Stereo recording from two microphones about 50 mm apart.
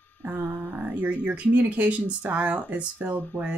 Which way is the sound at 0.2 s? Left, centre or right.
Right.